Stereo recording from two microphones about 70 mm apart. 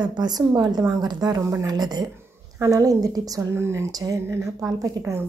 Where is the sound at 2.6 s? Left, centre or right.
Right.